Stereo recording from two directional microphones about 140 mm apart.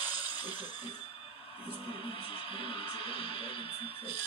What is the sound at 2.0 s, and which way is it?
Music, 40° left (ahead or behind).